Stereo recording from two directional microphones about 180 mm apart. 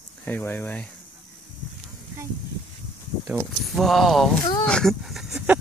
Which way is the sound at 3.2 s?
Centre (ahead or behind).